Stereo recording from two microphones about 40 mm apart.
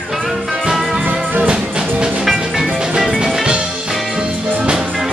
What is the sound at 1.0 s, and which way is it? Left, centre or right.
Music, right.